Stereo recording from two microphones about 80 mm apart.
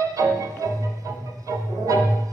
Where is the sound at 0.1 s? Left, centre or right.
Right.